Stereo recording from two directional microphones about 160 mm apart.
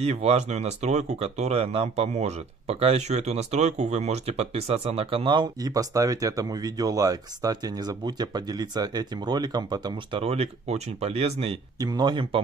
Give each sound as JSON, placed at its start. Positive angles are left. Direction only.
{"t": 0.0, "sound": "speech", "side_deg": -40}
{"t": 10.2, "sound": "speech", "side_deg": -40}
{"t": 11.8, "sound": "speech", "side_deg": -25}